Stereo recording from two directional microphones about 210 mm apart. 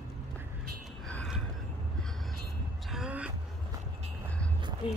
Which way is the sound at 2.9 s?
5° right (ahead or behind).